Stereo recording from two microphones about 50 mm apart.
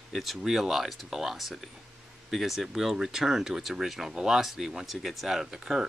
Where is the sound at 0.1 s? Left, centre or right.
Centre.